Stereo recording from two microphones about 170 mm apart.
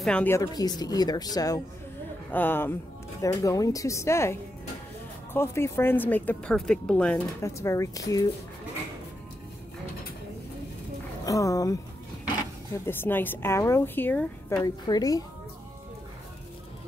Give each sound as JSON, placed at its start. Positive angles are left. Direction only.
{"t": 0.0, "sound": "speech", "side_deg": 10}
{"t": 0.4, "sound": "speech", "side_deg": 25}
{"t": 7.5, "sound": "speech", "side_deg": 20}
{"t": 11.2, "sound": "speech", "side_deg": 20}
{"t": 12.7, "sound": "speech", "side_deg": 15}
{"t": 14.6, "sound": "speech", "side_deg": 20}